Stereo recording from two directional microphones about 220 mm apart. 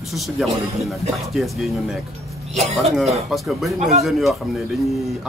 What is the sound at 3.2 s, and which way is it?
Speech, centre (ahead or behind).